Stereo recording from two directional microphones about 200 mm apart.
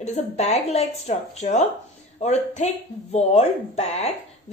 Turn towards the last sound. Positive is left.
turn(degrees=30)  # may be behind; listen again after turning